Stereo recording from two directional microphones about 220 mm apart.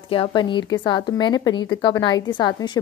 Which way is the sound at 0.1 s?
20° left (ahead or behind).